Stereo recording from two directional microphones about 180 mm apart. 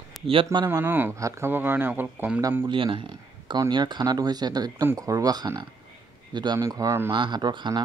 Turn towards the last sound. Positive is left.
turn(degrees=-25)  # may be behind; listen again after turning